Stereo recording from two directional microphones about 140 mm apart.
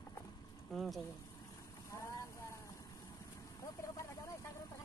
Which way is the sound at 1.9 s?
20° left (ahead or behind).